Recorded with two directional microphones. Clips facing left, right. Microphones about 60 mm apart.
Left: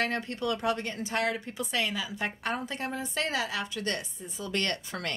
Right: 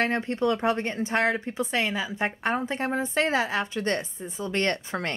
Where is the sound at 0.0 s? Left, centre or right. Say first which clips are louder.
Right 6 dB; right.